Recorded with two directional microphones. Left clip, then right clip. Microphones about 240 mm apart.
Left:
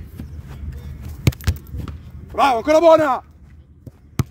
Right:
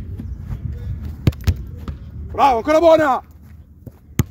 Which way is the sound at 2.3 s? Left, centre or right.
Left.